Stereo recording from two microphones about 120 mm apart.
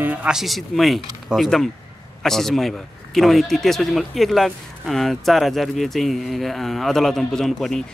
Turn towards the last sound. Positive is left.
turn(degrees=5)  # may be behind; listen again after turning